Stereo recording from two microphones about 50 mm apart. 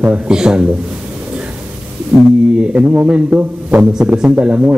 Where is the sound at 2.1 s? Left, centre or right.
Centre.